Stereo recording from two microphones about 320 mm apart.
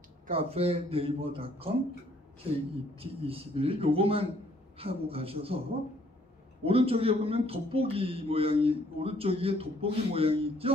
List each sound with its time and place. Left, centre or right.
0.3 s speech: centre
3.0 s speech: centre
6.6 s speech: centre